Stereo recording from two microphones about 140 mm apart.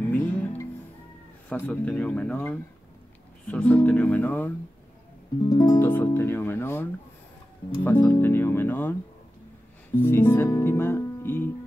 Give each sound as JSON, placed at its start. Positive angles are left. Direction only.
{"t": 0.0, "sound": "music", "side_deg": 10}
{"t": 1.5, "sound": "speech", "side_deg": 10}
{"t": 5.5, "sound": "speech", "side_deg": 30}
{"t": 5.8, "sound": "speech", "side_deg": 15}
{"t": 9.9, "sound": "speech", "side_deg": 15}
{"t": 10.5, "sound": "music", "side_deg": 20}